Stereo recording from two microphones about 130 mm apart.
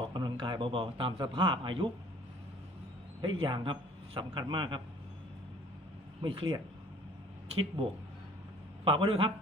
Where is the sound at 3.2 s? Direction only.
40° right (ahead or behind).